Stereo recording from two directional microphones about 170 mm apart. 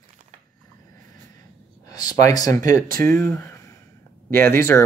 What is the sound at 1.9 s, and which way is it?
Speech, 20° left (ahead or behind).